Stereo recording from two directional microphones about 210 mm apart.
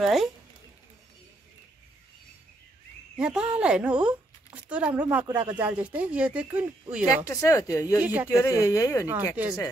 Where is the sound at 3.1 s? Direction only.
5° right (ahead or behind).